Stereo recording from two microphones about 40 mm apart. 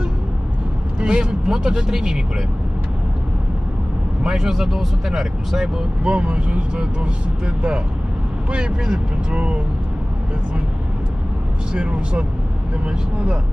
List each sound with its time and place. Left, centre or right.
0.9 s speech: right
4.2 s speech: centre
6.0 s speech: right
11.7 s speech: right